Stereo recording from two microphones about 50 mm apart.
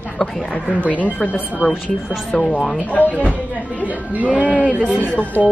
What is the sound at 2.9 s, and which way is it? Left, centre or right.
Speech, left.